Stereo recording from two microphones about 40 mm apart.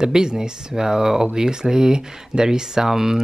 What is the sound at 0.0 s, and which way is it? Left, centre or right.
Speech, centre.